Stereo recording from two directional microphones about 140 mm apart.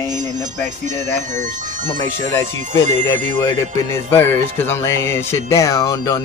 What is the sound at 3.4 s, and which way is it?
Speech, 20° left (ahead or behind).